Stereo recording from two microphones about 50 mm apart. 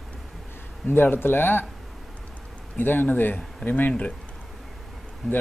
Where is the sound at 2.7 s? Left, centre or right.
Left.